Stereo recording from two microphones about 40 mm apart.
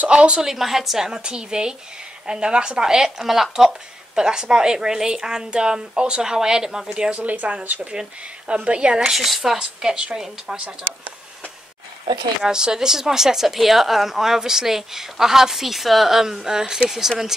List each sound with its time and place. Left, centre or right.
0.1 s speech: right
0.4 s speech: centre; by 7.2 s right
7.2 s speech: right
7.9 s speech: right
9.1 s speech: centre
12.4 s speech: centre